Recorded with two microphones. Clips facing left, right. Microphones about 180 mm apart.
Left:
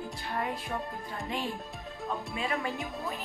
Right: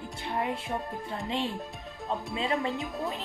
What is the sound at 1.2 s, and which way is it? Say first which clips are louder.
Speech: right 3 dB; 25° right (ahead or behind).